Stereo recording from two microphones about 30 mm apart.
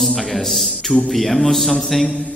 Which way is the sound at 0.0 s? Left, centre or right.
Centre.